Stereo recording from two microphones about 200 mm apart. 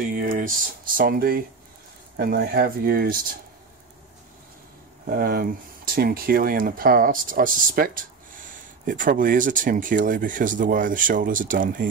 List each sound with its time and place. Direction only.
0.1 s speech: 45° right (ahead or behind)
5.0 s speech: 45° right (ahead or behind)